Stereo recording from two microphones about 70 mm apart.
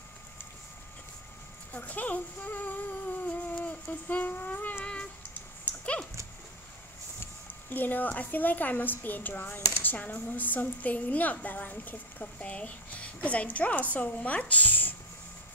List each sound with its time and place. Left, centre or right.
1.7 s speech: left
3.3 s humming: centre
3.8 s speech: left
5.7 s dog: centre
7.2 s speech: left